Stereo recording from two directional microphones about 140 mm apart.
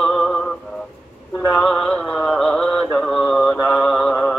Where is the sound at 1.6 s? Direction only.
5° left (ahead or behind).